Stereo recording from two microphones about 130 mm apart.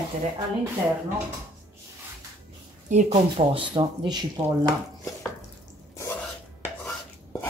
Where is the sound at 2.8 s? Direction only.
65° right (ahead or behind).